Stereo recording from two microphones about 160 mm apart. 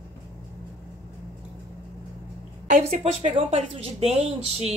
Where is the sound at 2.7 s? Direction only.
40° right (ahead or behind).